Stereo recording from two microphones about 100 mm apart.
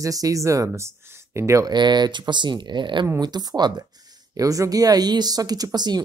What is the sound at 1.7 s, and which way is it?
Speech, 50° right (ahead or behind).